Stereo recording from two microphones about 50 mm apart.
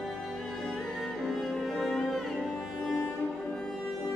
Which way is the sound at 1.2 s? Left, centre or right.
Centre.